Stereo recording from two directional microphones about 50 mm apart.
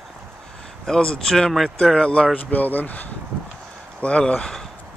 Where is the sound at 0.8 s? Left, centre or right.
Centre.